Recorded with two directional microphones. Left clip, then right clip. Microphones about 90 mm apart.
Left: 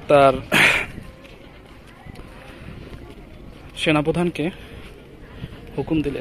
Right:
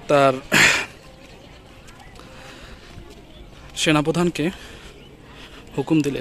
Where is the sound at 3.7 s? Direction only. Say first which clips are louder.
Even; 35° right (ahead or behind).